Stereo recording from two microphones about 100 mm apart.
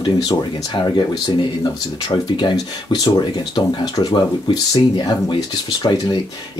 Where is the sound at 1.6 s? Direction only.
50° left (ahead or behind).